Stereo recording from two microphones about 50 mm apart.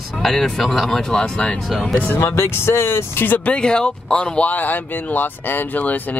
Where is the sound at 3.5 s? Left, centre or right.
Centre.